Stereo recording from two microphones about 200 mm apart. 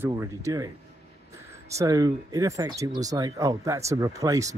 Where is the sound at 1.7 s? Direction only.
20° right (ahead or behind).